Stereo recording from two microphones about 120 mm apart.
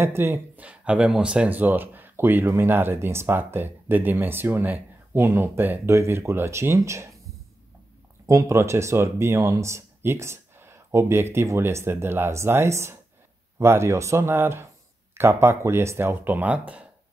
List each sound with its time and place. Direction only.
0.0 s speech: 20° right (ahead or behind)
8.3 s speech: 25° right (ahead or behind); by 16.8 s 10° right (ahead or behind)